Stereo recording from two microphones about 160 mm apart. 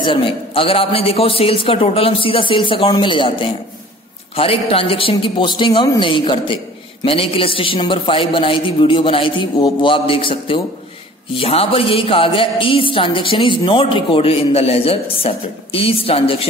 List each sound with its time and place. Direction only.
0.0 s a man's voice: 30° left (ahead or behind)